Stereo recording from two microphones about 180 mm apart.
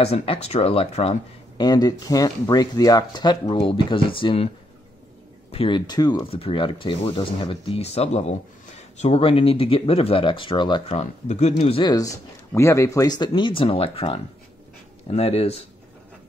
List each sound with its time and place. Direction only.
0.0 s speech: 35° left (ahead or behind)
1.6 s speech: 20° left (ahead or behind)
5.5 s speech: 30° left (ahead or behind)
11.8 s speech: 20° left (ahead or behind)